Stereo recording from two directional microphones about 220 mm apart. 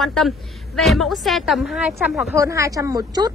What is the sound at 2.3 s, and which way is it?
Speech, 15° right (ahead or behind).